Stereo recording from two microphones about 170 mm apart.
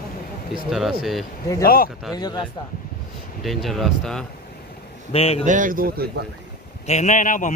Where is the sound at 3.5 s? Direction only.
Centre (ahead or behind).